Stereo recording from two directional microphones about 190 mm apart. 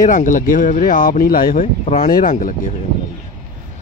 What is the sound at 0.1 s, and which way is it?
Speech, 45° left (ahead or behind).